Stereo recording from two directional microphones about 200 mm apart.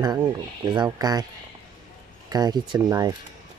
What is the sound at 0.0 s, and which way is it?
Speech, 20° right (ahead or behind).